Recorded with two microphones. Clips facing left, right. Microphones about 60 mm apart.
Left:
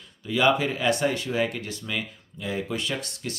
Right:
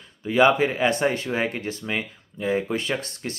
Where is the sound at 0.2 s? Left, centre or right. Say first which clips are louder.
Right 4 dB; right.